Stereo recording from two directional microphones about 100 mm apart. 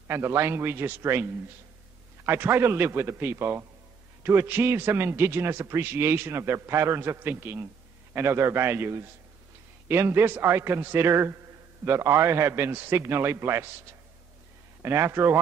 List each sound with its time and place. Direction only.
0.1 s a man's voice: 25° right (ahead or behind)
14.8 s a man's voice: 25° right (ahead or behind)